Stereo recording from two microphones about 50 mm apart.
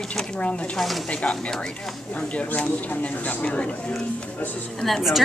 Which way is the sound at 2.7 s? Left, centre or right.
Left.